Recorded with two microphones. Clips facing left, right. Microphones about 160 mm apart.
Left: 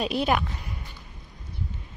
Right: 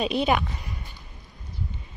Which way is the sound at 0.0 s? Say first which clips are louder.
Right 1 dB; centre (ahead or behind).